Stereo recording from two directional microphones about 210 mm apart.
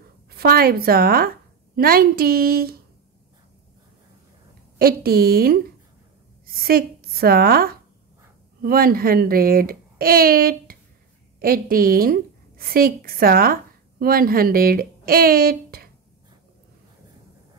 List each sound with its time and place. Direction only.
0.3 s a child's voice: 45° right (ahead or behind)
4.7 s a child's voice: 45° right (ahead or behind)